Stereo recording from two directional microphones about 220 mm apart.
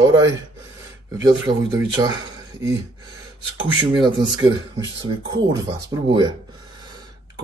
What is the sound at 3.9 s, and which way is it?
Speech, 20° right (ahead or behind).